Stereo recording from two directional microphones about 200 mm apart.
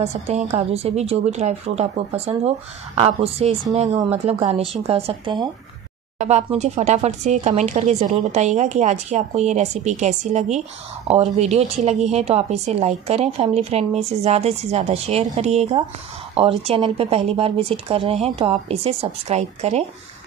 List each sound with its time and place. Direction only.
0.0 s a woman's voice: 30° right (ahead or behind)
6.1 s a woman's voice: 35° right (ahead or behind)